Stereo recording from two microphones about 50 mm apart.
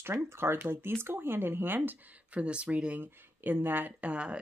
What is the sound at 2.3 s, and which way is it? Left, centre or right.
Speech, right.